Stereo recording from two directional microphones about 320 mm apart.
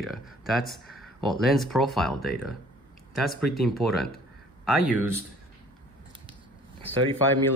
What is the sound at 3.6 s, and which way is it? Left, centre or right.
Speech, centre.